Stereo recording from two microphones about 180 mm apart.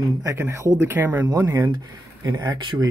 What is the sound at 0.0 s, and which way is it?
Speech, 15° right (ahead or behind).